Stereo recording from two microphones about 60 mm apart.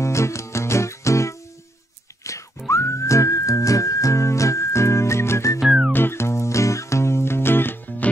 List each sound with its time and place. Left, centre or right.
0.0 s music: left
2.3 s whistling: left
5.6 s music: centre
5.9 s music: left